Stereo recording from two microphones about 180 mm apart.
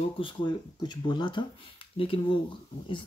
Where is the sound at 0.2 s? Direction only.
25° left (ahead or behind).